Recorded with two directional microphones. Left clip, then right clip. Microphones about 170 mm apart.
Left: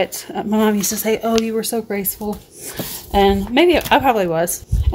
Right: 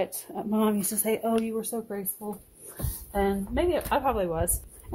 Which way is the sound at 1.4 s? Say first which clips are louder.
Left 11 dB; 20° left (ahead or behind).